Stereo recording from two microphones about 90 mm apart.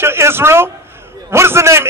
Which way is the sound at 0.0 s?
25° right (ahead or behind).